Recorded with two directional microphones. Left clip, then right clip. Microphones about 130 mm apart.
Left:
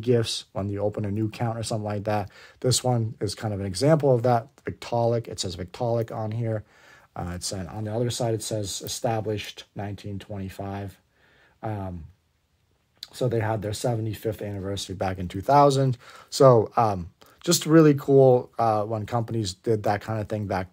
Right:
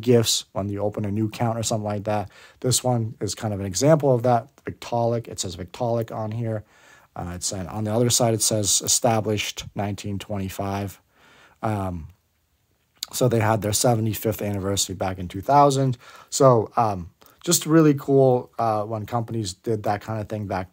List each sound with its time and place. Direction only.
0.0 s speech: 25° right (ahead or behind); by 7.6 s 10° right (ahead or behind)
7.8 s speech: 50° right (ahead or behind)
13.0 s speech: 50° right (ahead or behind)
15.0 s speech: 10° right (ahead or behind)